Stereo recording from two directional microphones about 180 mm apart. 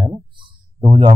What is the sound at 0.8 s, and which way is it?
Speech, 25° right (ahead or behind).